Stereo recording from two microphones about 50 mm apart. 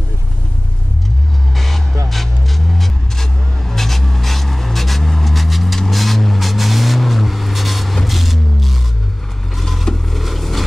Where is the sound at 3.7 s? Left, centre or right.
Centre.